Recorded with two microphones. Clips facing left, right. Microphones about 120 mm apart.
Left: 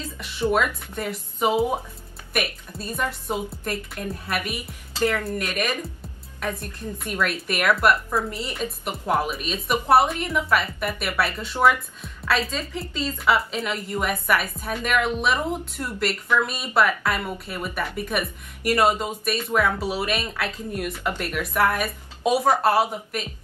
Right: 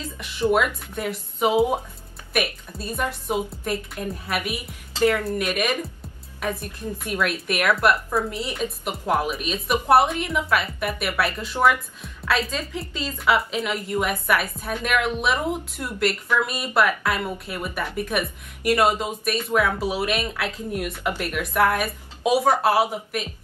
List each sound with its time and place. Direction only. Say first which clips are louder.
0.2 s speech: right 1 dB; centre (ahead or behind)
1.5 s speech: right 2 dB; 15° right (ahead or behind)
2.3 s speech: right 2 dB; centre (ahead or behind)
4.9 s speech: right 3 dB; 15° right (ahead or behind)
7.0 s speech: right 1 dB; 5° right (ahead or behind)